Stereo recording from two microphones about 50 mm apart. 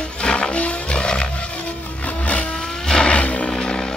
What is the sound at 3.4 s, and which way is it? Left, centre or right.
Music, centre.